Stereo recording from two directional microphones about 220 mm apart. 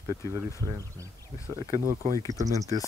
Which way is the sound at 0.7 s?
15° right (ahead or behind).